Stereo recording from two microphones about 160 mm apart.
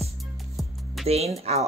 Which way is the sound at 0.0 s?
Centre (ahead or behind).